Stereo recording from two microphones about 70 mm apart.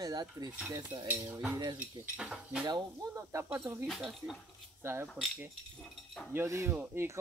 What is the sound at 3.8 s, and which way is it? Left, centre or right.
Speech, centre.